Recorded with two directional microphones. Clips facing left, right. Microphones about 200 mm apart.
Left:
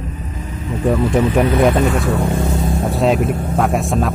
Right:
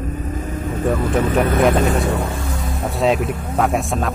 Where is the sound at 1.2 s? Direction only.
50° right (ahead or behind).